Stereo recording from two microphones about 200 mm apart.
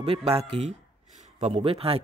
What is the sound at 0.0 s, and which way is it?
Speech, 30° right (ahead or behind).